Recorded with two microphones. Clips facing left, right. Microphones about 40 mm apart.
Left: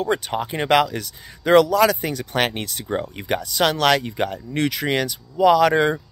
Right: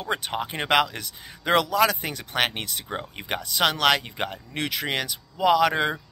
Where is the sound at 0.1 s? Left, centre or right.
Centre.